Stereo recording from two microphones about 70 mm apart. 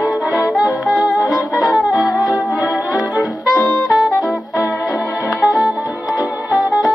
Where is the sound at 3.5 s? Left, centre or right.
Left.